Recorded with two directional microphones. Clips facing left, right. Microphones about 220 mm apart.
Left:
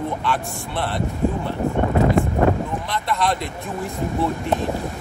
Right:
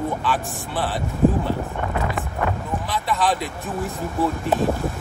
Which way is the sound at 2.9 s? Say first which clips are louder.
Right 1 dB; 5° right (ahead or behind).